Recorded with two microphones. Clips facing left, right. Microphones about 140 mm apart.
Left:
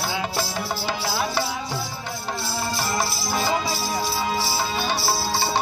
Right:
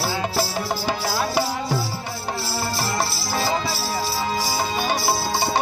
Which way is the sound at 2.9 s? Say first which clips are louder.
Even; 5° right (ahead or behind).